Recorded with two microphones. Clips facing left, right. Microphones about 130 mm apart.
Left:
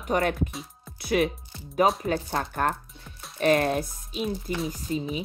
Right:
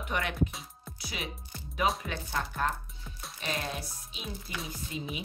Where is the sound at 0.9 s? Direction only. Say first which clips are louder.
Left 16 dB; 55° left (ahead or behind).